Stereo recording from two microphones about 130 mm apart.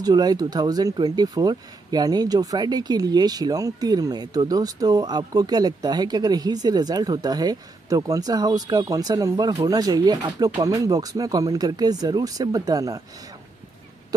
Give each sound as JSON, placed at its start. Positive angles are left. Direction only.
{"t": 0.0, "sound": "speech", "side_deg": -30}